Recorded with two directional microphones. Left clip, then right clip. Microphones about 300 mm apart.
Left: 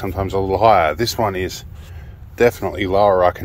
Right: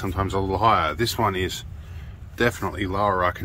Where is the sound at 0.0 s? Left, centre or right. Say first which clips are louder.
Left 5 dB; centre.